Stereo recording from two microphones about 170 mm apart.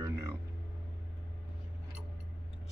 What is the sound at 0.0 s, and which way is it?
Music, 15° right (ahead or behind).